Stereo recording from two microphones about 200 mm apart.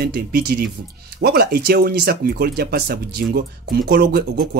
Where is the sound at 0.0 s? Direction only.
55° right (ahead or behind).